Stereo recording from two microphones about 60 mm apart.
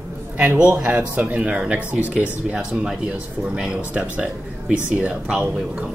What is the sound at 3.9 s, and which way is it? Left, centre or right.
Speech, right.